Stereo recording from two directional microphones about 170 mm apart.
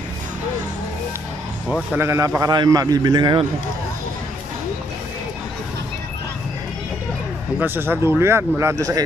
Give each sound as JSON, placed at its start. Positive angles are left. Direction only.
{"t": 2.0, "sound": "a man's voice", "side_deg": -15}
{"t": 7.6, "sound": "a man's voice", "side_deg": -10}